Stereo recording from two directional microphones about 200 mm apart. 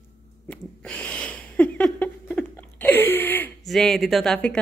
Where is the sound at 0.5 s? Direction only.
5° left (ahead or behind).